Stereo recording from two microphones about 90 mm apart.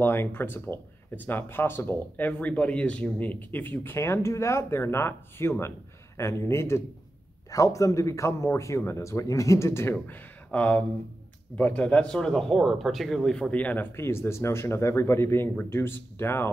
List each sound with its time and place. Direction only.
0.0 s speech: 25° left (ahead or behind)
10.0 s speech: 15° left (ahead or behind)